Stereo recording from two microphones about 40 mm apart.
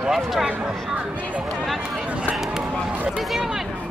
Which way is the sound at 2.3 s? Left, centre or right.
Centre.